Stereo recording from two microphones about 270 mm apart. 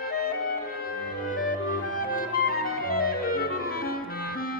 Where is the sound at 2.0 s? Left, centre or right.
Left.